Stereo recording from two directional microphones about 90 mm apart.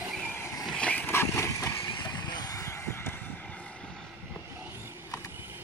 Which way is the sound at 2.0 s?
50° left (ahead or behind).